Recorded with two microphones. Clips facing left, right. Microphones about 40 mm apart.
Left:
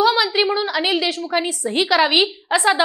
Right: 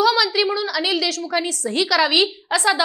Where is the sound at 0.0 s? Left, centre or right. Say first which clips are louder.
Left 1 dB; left.